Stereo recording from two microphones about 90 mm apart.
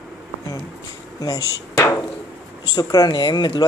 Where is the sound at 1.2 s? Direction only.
45° left (ahead or behind).